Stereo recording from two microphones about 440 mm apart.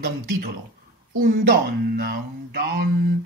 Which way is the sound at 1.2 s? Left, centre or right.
Centre.